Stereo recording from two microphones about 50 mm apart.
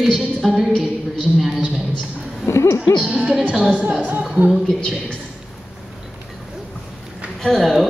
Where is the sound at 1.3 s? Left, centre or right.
Centre.